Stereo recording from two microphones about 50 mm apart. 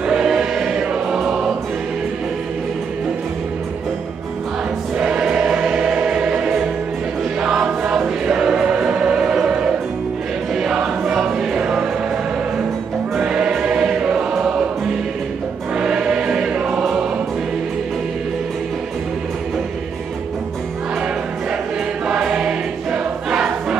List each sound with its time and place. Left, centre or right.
0.0 s choir: centre
5.0 s choir: centre
11.1 s choir: centre
11.5 s music: centre
13.3 s choir: centre
15.7 s music: centre
22.0 s choir: centre